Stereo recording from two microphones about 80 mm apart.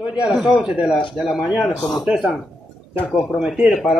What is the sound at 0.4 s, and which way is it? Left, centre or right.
Speech, centre.